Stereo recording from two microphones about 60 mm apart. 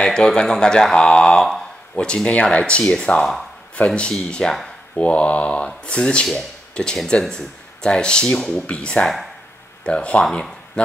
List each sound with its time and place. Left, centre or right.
0.0 s speech: centre
4.9 s mantra: left
5.9 s speech: centre
9.0 s speech: centre
9.8 s mantra: centre